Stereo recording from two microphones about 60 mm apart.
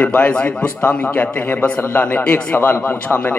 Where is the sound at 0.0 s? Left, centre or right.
Left.